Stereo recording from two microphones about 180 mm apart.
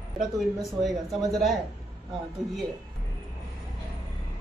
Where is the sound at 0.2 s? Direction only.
Centre (ahead or behind).